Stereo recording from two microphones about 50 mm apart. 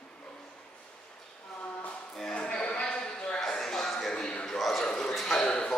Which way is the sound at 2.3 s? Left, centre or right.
Centre.